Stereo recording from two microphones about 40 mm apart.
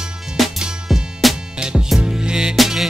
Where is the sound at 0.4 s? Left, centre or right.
Centre.